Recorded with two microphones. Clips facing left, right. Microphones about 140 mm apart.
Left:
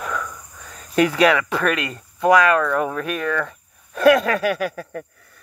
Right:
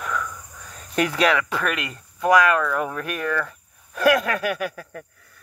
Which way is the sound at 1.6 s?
5° right (ahead or behind).